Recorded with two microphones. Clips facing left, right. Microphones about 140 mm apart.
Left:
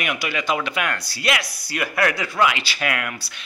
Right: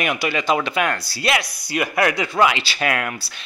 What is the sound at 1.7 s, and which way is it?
Speech, 20° right (ahead or behind).